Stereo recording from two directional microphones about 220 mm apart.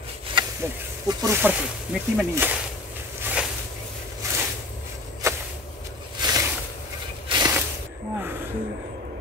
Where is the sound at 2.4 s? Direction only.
10° right (ahead or behind).